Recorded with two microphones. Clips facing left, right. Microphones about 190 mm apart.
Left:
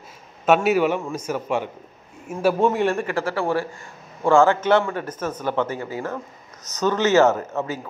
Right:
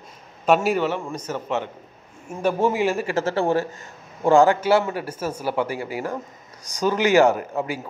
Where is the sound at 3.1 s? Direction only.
25° right (ahead or behind).